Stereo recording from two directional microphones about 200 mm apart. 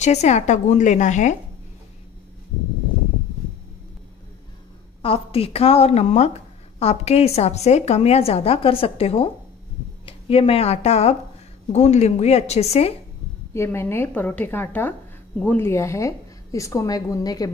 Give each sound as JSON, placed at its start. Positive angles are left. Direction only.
{"t": 0.0, "sound": "a woman's voice", "side_deg": 35}
{"t": 5.0, "sound": "a woman's voice", "side_deg": 30}
{"t": 13.5, "sound": "speech", "side_deg": 15}